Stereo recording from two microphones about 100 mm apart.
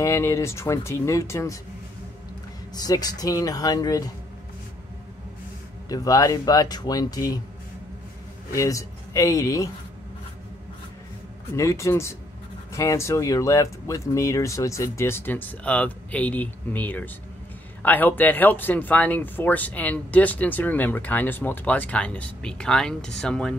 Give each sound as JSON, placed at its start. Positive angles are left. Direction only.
{"t": 0.0, "sound": "speech", "side_deg": 30}
{"t": 2.7, "sound": "speech", "side_deg": 40}
{"t": 5.9, "sound": "speech", "side_deg": 35}
{"t": 8.5, "sound": "a man's voice", "side_deg": 30}
{"t": 11.5, "sound": "speech", "side_deg": 30}